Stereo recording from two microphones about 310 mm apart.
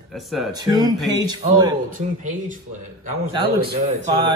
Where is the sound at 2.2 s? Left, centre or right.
Right.